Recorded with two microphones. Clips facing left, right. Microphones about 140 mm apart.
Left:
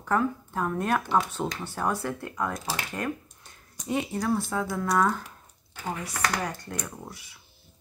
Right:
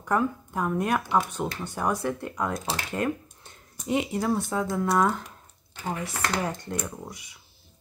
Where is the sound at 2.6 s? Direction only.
25° right (ahead or behind).